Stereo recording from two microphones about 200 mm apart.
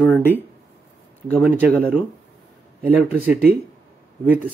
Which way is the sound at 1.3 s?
10° right (ahead or behind).